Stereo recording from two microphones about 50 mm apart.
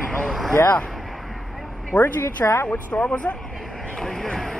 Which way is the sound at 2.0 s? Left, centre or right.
Left.